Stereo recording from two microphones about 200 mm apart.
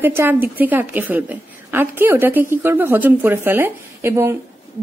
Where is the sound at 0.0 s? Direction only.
10° right (ahead or behind).